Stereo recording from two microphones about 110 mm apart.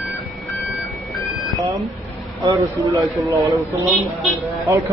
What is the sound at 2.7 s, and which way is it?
Speech, 30° right (ahead or behind).